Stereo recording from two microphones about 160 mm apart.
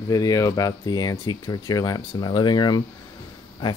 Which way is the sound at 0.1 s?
20° left (ahead or behind).